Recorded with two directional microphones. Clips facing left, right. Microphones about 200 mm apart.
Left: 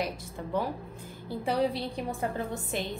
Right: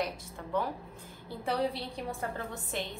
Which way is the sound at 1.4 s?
15° left (ahead or behind).